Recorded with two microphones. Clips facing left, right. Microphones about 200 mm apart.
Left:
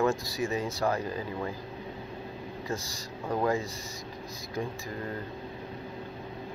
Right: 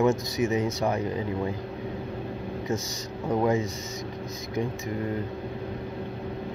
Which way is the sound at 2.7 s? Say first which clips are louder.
Right 4 dB; 20° right (ahead or behind).